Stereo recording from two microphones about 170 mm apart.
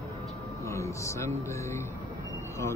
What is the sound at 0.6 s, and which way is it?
Speech, 15° left (ahead or behind).